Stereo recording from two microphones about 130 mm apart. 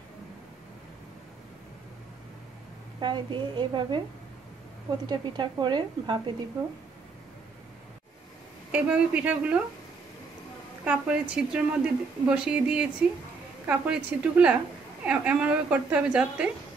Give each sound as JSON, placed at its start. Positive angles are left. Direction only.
{"t": 3.0, "sound": "a woman's voice", "side_deg": -40}
{"t": 5.0, "sound": "a woman's voice", "side_deg": -35}
{"t": 8.7, "sound": "a woman's voice", "side_deg": -10}
{"t": 10.8, "sound": "a woman's voice", "side_deg": -10}